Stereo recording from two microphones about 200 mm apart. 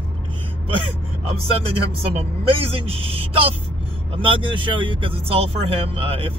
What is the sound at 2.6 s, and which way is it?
Speech, 30° right (ahead or behind).